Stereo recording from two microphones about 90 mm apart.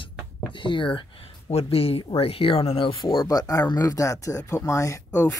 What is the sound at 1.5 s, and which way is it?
Speech, 90° left.